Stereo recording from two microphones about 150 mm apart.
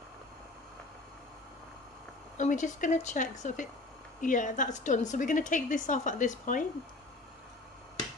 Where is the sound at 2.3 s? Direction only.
55° left (ahead or behind).